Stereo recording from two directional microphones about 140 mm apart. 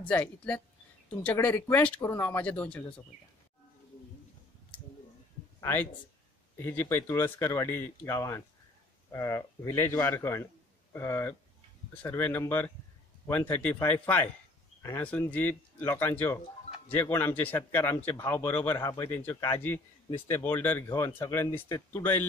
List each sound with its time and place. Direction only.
0.1 s speech: 10° left (ahead or behind)
5.6 s a man's voice: 15° left (ahead or behind)
15.0 s speech: 10° left (ahead or behind)